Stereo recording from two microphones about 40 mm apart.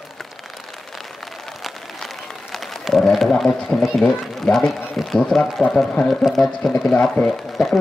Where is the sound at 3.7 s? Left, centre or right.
Centre.